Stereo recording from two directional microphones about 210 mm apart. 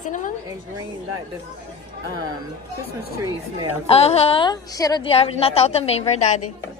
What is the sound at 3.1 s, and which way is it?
Speech, 15° right (ahead or behind).